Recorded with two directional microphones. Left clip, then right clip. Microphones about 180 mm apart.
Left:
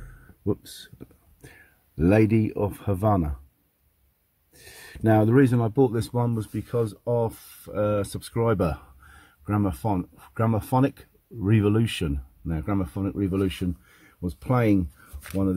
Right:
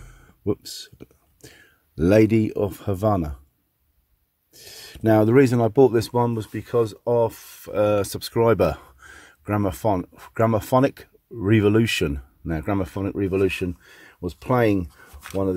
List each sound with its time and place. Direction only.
0.6 s speech: 25° right (ahead or behind)
4.6 s speech: 25° right (ahead or behind)
7.7 s speech: 45° right (ahead or behind)